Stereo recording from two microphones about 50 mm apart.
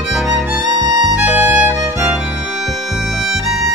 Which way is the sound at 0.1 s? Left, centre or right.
Centre.